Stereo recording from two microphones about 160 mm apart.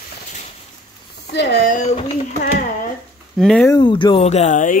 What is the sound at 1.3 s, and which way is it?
Speech, 90° left.